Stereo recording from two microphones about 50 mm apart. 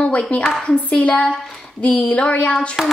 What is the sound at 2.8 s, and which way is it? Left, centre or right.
Speech, centre.